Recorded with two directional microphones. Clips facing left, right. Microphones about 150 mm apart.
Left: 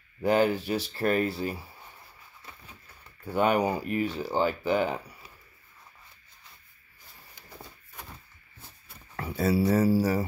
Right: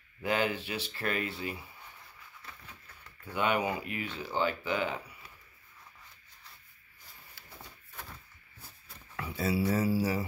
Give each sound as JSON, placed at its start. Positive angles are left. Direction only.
{"t": 0.2, "sound": "speech", "side_deg": 40}
{"t": 3.3, "sound": "speech", "side_deg": 40}
{"t": 7.9, "sound": "a sound", "side_deg": 20}
{"t": 9.1, "sound": "speech", "side_deg": 40}